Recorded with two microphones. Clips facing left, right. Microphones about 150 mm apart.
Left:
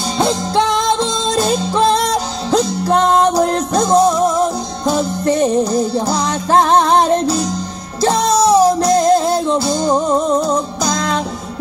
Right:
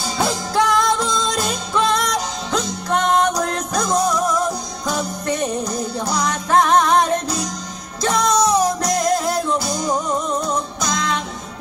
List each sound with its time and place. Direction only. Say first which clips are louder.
0.2 s music: left 4 dB; 25° left (ahead or behind)